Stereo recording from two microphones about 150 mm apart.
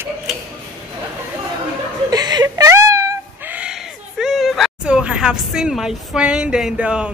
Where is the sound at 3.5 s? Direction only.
5° right (ahead or behind).